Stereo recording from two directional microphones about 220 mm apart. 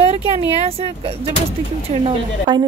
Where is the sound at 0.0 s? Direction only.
30° right (ahead or behind).